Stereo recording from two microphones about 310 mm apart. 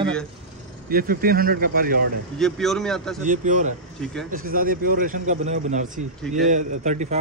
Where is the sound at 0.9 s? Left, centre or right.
Right.